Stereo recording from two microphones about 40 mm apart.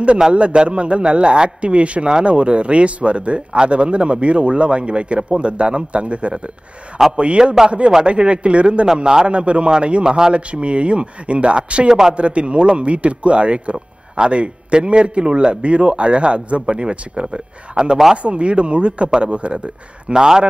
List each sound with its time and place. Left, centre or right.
0.3 s a man's voice: right
8.8 s a man's voice: centre
9.3 s a man's voice: right
10.3 s a man's voice: right
19.3 s a man's voice: right
20.1 s a man's voice: centre